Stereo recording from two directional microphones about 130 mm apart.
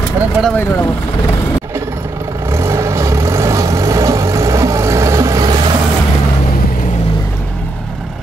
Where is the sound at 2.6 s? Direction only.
20° right (ahead or behind).